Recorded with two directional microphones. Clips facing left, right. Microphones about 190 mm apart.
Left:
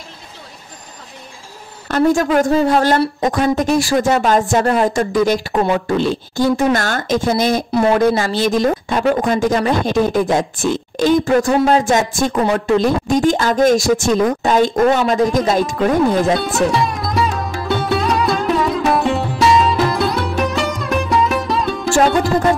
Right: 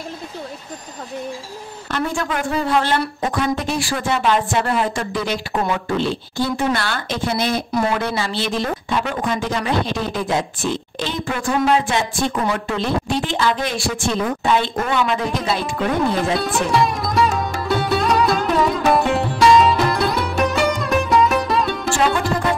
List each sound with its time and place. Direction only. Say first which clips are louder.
1.9 s a woman's voice: left 9 dB; 40° left (ahead or behind)
16.7 s music: even; centre (ahead or behind)
21.9 s music: left 6 dB; 40° left (ahead or behind)